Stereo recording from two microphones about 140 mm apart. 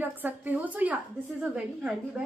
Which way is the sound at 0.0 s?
15° right (ahead or behind).